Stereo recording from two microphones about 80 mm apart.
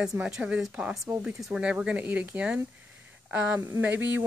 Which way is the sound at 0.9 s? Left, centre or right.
Centre.